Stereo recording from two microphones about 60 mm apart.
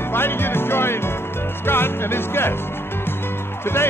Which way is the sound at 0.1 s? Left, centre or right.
Left.